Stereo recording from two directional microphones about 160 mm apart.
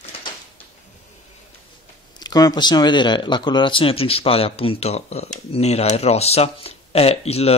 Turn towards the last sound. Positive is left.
turn(degrees=40)  # may be behind; listen again after turning